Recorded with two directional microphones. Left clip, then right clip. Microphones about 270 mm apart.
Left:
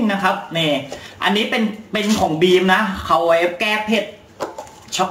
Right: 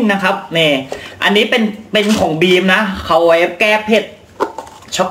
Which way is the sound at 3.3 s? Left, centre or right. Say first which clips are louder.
Right 5 dB; centre.